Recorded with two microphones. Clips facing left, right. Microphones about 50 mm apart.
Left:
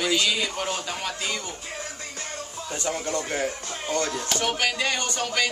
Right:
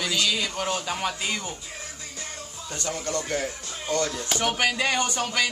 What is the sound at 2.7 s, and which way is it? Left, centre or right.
Speech, centre.